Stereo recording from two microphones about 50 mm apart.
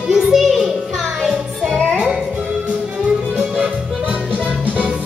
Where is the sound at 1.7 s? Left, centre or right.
Centre.